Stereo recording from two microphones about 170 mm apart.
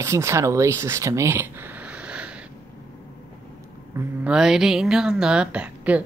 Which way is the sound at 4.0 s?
5° right (ahead or behind).